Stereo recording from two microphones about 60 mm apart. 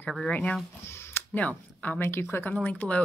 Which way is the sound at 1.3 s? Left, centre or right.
Left.